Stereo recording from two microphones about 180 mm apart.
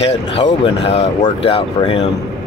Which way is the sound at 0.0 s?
35° left (ahead or behind).